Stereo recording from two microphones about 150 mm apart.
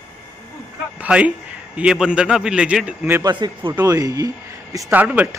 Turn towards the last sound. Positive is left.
turn(degrees=-10)  # may be behind; listen again after turning